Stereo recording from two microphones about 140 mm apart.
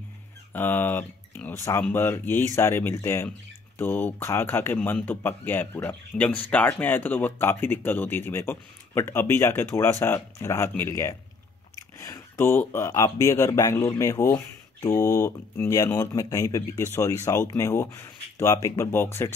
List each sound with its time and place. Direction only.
0.5 s speech: 15° left (ahead or behind)